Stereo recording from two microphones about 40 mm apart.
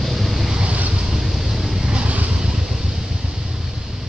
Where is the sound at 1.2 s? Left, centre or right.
Centre.